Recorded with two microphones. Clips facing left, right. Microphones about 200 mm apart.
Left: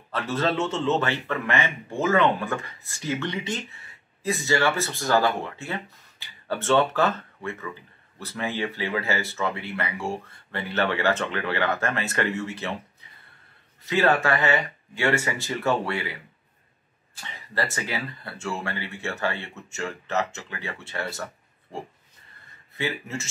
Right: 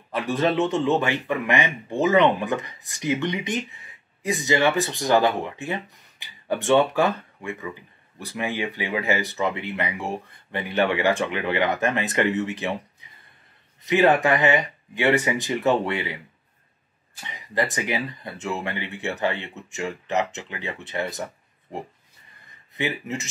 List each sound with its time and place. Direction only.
0.1 s a man's voice: 15° right (ahead or behind)
13.8 s a man's voice: 15° right (ahead or behind)
17.2 s a man's voice: 15° right (ahead or behind)
21.7 s pig: 20° right (ahead or behind)
22.8 s a man's voice: 20° right (ahead or behind)